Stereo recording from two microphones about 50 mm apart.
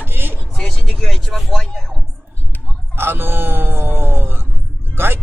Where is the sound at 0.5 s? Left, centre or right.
Centre.